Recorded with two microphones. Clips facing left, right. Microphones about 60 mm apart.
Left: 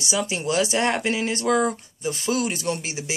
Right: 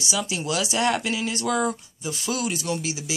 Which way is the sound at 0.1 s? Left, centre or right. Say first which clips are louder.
Left 3 dB; left.